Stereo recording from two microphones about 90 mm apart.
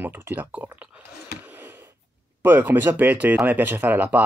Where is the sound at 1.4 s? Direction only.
20° right (ahead or behind).